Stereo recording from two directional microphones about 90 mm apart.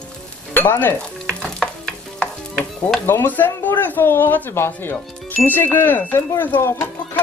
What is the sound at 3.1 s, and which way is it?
Speech, 20° left (ahead or behind).